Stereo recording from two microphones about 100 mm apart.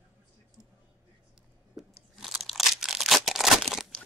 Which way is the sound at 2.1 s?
Centre (ahead or behind).